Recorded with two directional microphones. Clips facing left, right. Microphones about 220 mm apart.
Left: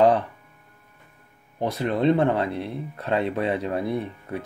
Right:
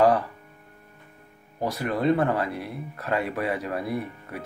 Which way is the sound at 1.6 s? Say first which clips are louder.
Left 3 dB; 25° left (ahead or behind).